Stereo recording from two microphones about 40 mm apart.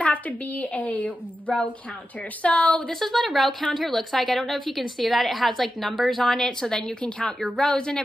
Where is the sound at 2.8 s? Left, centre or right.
Centre.